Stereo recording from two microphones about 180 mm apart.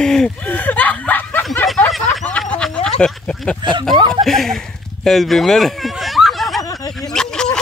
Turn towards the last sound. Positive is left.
turn(degrees=5)  # may be behind; listen again after turning